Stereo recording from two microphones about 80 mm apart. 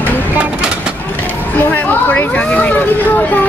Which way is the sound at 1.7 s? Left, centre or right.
Left.